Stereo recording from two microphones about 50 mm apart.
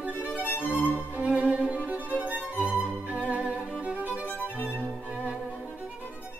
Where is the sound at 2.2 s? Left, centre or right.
Right.